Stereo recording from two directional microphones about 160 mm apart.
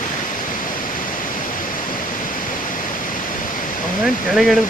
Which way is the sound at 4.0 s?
Centre (ahead or behind).